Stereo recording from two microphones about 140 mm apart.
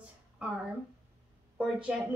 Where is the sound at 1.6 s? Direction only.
5° right (ahead or behind).